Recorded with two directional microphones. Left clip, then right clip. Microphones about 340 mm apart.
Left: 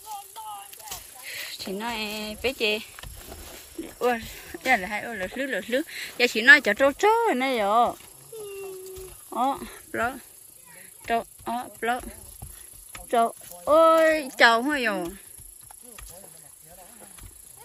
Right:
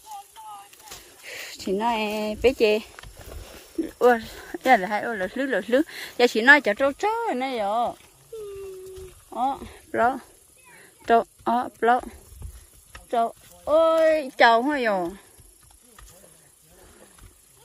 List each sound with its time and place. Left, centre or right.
0.3 s a sound: left
1.2 s snake: right
1.7 s a woman's voice: centre
9.3 s speech: centre